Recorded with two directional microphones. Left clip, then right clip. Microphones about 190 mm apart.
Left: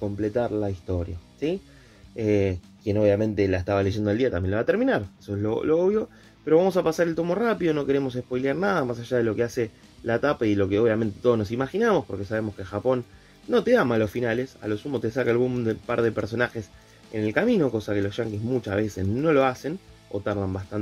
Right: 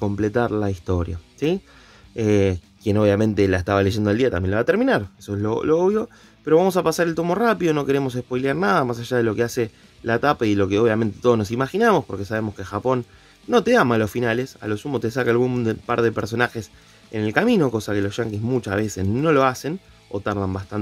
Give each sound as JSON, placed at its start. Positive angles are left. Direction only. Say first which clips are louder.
{"t": 0.1, "sound": "speech", "louder": "right 3 dB", "side_deg": -40}